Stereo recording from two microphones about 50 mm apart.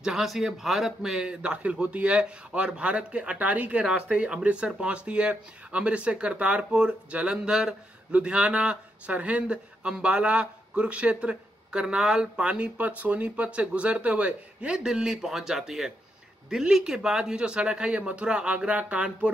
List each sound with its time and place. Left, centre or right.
0.0 s speech: centre; by 19.3 s right